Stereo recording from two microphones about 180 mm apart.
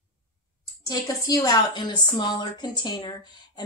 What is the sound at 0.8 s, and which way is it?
A woman's voice, 20° left (ahead or behind).